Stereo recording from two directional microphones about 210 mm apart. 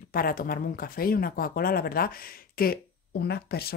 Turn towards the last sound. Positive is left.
turn(degrees=50)  # may be behind; listen again after turning